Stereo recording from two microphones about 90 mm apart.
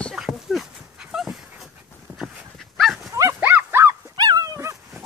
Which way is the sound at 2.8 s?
Centre (ahead or behind).